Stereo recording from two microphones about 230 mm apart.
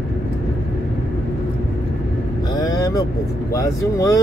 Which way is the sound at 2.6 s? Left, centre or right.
Centre.